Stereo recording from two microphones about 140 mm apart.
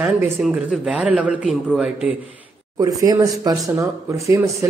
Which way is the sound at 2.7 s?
25° right (ahead or behind).